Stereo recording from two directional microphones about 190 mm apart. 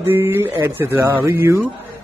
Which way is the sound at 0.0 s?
15° right (ahead or behind).